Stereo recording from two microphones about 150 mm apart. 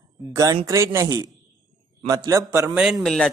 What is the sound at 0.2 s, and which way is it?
Speech, 20° right (ahead or behind).